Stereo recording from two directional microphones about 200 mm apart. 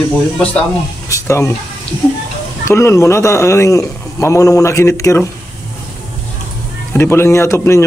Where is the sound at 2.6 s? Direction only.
15° left (ahead or behind).